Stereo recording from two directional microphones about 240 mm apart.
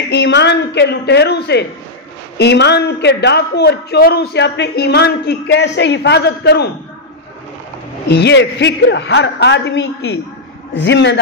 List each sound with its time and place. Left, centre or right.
0.1 s a man's voice: left
8.1 s a man's voice: left